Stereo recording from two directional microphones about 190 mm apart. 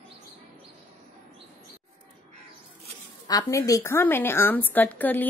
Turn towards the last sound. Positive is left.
turn(degrees=10)  # may be behind; listen again after turning